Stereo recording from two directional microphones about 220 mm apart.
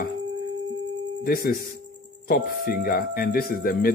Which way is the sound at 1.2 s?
45° left (ahead or behind).